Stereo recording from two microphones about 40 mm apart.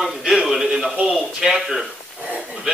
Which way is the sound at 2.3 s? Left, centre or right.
Centre.